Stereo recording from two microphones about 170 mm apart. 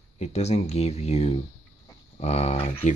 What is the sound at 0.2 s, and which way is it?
Speech, 40° left (ahead or behind).